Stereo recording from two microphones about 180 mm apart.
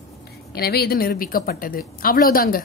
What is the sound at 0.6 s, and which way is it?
A woman's voice, 60° left (ahead or behind).